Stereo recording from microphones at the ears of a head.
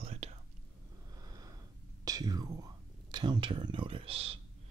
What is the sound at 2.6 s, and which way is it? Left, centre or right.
Speech, right.